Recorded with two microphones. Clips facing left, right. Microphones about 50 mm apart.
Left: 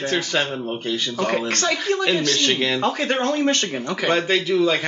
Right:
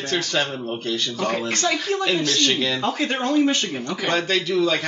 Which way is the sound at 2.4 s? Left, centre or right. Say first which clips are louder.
Left 1 dB; left.